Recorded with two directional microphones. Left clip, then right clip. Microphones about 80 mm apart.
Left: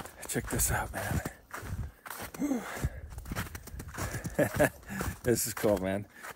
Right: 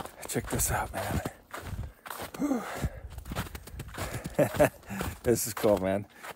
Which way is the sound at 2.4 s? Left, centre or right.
Right.